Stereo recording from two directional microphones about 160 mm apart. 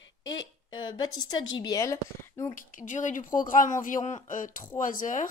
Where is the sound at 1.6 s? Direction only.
20° left (ahead or behind).